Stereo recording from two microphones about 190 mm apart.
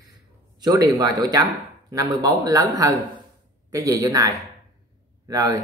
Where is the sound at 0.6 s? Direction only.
20° right (ahead or behind).